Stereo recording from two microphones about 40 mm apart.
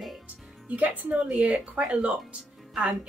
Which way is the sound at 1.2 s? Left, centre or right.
Right.